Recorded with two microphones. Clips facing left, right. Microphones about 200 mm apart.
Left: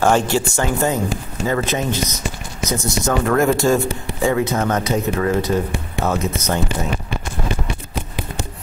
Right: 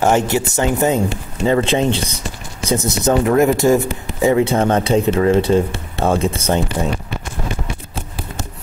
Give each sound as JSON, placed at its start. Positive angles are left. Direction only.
{"t": 0.0, "sound": "speech", "side_deg": -20}
{"t": 2.8, "sound": "speech", "side_deg": -20}